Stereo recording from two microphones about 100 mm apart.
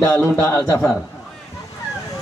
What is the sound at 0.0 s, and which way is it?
Speech, 30° left (ahead or behind).